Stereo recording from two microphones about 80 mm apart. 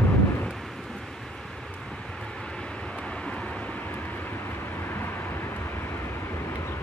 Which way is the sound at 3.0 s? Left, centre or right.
Centre.